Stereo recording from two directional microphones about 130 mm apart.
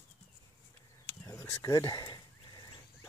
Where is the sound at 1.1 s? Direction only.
25° left (ahead or behind).